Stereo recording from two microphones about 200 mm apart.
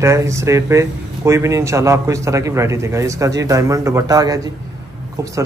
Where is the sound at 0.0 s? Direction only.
15° right (ahead or behind).